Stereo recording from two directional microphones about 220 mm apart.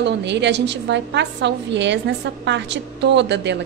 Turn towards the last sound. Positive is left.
turn(degrees=-50)  # may be behind; listen again after turning